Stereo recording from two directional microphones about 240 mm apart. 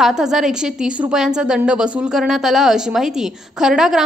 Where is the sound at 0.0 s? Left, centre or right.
Centre.